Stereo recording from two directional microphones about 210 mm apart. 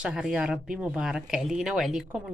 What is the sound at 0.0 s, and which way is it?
Speech, 5° right (ahead or behind).